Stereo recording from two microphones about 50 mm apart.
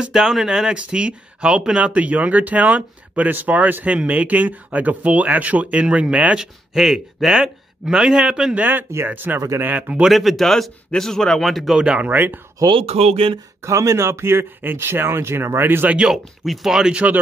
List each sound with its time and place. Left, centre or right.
0.0 s speech: centre
8.5 s speech: right
10.0 s speech: centre
11.7 s speech: centre
12.0 s speech: right
13.6 s speech: right
16.1 s speech: centre
16.9 s speech: right